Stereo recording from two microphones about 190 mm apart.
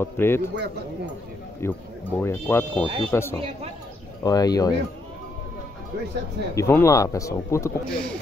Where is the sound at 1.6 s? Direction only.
15° left (ahead or behind).